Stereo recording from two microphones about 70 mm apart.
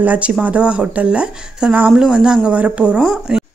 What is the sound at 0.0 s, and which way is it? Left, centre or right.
Speech, right.